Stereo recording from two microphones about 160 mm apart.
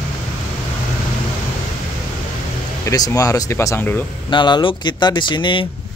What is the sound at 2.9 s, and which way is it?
Speech, 20° left (ahead or behind).